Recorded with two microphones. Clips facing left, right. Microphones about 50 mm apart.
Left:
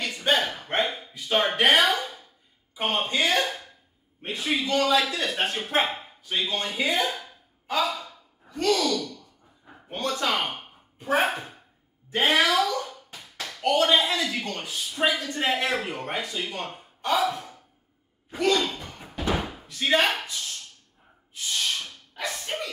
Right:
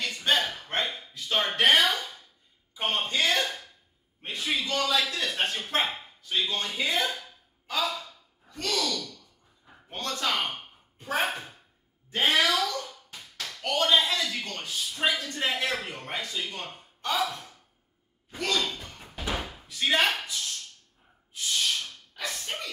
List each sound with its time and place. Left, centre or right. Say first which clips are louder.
0.0 s a sound: left 2 dB; centre
2.7 s speech: left 3 dB; centre
7.7 s gasp: left 4 dB; centre
12.1 s speech: left 3 dB; centre
18.3 s slam: left 6 dB; centre
21.3 s snort: even; centre